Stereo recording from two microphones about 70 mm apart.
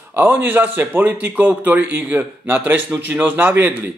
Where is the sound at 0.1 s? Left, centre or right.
Right.